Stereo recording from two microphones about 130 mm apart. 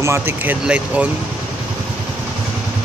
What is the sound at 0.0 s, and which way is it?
Speech, 20° right (ahead or behind).